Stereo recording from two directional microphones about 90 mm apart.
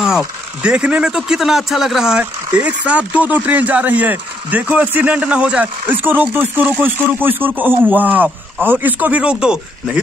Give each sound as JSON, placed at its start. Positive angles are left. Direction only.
{"t": 0.6, "sound": "a man's voice", "side_deg": -10}